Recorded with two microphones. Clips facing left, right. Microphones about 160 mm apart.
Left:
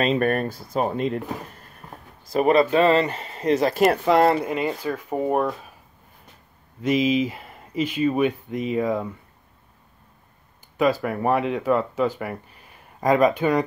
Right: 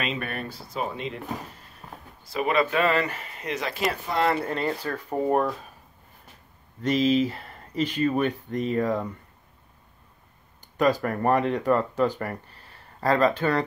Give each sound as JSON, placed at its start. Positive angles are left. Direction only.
{"t": 0.0, "sound": "speech", "side_deg": 45}
{"t": 2.3, "sound": "speech", "side_deg": 40}
{"t": 3.9, "sound": "speech", "side_deg": 80}
{"t": 4.4, "sound": "speech", "side_deg": 10}
{"t": 6.8, "sound": "speech", "side_deg": 10}
{"t": 10.8, "sound": "speech", "side_deg": 5}